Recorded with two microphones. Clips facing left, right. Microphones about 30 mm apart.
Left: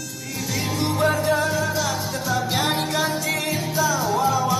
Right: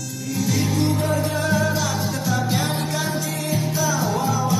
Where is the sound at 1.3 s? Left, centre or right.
Centre.